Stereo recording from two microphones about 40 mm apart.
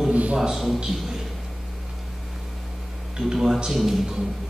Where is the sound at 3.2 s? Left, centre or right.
Centre.